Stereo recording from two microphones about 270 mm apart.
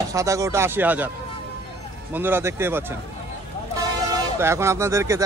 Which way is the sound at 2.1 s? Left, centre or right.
Centre.